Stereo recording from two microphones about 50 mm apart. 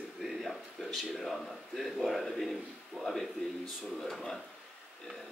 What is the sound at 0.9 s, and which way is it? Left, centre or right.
A man's voice, centre.